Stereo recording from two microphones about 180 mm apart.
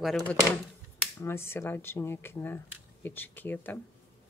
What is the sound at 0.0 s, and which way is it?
Speech, centre (ahead or behind).